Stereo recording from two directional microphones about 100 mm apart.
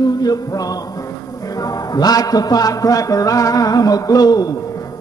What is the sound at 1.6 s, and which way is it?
A man's voice, 40° left (ahead or behind).